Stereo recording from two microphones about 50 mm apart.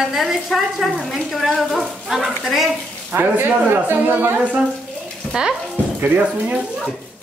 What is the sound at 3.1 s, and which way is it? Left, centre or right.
A woman's voice, right.